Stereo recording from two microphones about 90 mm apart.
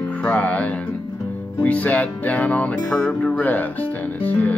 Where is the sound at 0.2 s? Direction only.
15° left (ahead or behind).